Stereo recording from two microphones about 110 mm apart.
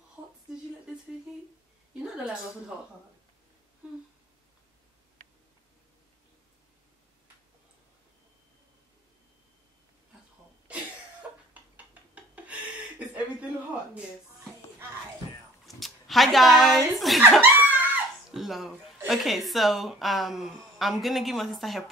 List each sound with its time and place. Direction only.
2.0 s speech: 5° right (ahead or behind)
3.8 s a sound: 10° right (ahead or behind)
13.0 s chuckle: 15° right (ahead or behind)
15.6 s speech: centre (ahead or behind)
17.4 s a sound: 15° right (ahead or behind)
18.3 s speech: centre (ahead or behind)